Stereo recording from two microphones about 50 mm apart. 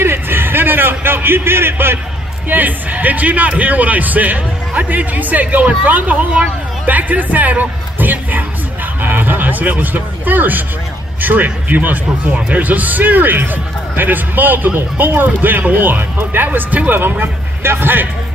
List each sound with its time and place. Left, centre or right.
0.0 s a sound: right
2.5 s a man's voice: right
17.0 s speech: right